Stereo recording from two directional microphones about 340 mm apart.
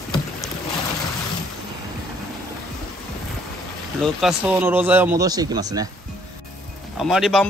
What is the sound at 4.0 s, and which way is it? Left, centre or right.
A man's voice, centre.